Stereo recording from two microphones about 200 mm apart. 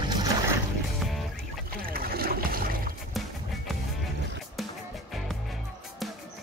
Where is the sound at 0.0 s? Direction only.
20° right (ahead or behind).